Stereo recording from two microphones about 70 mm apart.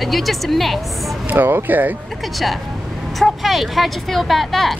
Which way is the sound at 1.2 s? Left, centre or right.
Right.